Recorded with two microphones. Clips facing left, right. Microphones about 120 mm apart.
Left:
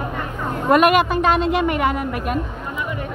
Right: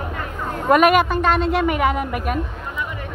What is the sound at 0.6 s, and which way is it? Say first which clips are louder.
A woman's voice: even; centre (ahead or behind).